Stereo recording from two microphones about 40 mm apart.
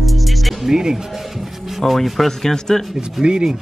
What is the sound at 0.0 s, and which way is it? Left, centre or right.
Music, centre.